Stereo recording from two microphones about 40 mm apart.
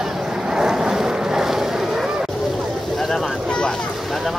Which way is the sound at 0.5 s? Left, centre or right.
Centre.